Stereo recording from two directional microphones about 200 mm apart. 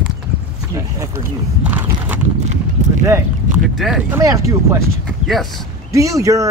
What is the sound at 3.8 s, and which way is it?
Speech, 5° right (ahead or behind).